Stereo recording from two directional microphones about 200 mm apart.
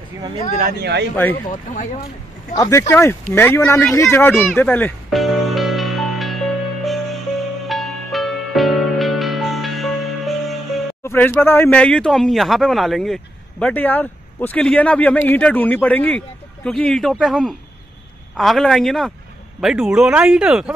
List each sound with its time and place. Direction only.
0.6 s speech: 50° right (ahead or behind)
2.5 s a man's voice: 15° left (ahead or behind)
4.6 s music: 10° left (ahead or behind)
11.1 s a man's voice: 10° left (ahead or behind)